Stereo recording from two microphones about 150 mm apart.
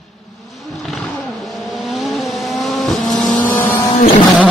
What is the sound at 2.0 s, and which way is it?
Vehicle, centre (ahead or behind).